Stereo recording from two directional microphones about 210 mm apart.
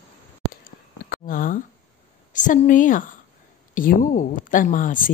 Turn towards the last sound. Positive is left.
turn(degrees=40)  # may be behind; listen again after turning